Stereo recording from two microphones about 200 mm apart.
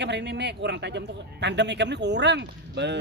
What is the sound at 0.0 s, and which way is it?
Speech, 60° right (ahead or behind).